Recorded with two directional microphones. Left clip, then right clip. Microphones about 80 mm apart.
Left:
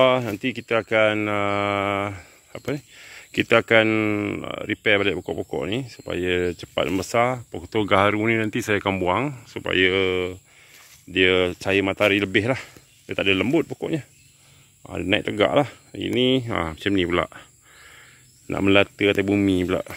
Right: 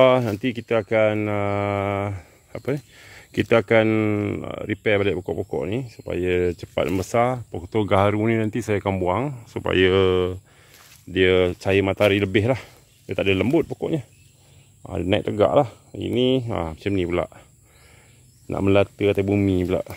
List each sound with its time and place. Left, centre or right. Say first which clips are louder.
0.0 s speech: right 2 dB; right
1.0 s speech: left 1 dB; centre
2.5 s speech: right 2 dB; right
5.6 s speech: even; centre
9.5 s speech: right 2 dB; right
11.1 s speech: right 1 dB; right
14.9 s speech: even; right
15.2 s speech: right 3 dB; centre
16.4 s speech: left 2 dB; centre
18.5 s speech: left 1 dB; centre